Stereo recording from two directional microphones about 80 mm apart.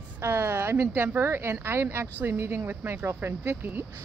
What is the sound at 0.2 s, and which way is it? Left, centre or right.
A woman's voice, right.